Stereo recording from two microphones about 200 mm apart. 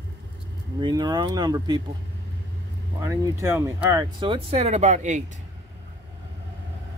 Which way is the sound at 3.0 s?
15° right (ahead or behind).